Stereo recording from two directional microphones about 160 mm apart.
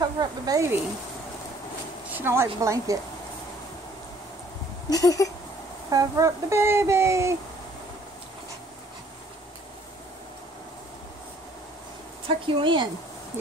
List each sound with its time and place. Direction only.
0.0 s speech: 25° right (ahead or behind)
2.1 s speech: 15° right (ahead or behind)
4.9 s a sound: 20° left (ahead or behind)
5.9 s speech: 20° right (ahead or behind)
12.3 s speech: 35° right (ahead or behind)